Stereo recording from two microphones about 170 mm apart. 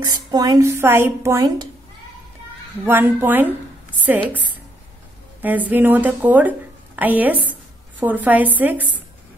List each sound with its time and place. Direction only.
0.0 s speech: 25° right (ahead or behind)
2.8 s speech: 10° right (ahead or behind)